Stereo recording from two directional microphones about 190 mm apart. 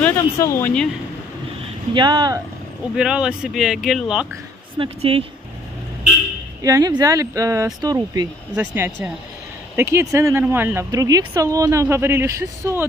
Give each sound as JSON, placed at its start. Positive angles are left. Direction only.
{"t": 0.0, "sound": "speech", "side_deg": 10}
{"t": 2.0, "sound": "speech", "side_deg": -25}
{"t": 3.0, "sound": "speech", "side_deg": -5}
{"t": 4.7, "sound": "speech", "side_deg": -30}
{"t": 6.6, "sound": "speech", "side_deg": -20}